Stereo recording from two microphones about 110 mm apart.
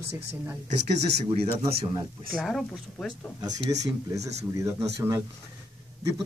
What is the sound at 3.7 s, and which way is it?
Speech, 30° right (ahead or behind).